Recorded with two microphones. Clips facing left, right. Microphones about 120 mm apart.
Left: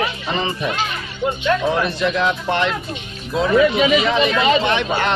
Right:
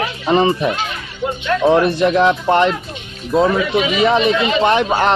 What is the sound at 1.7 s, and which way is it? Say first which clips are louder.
Speech: right 6 dB; 55° right (ahead or behind).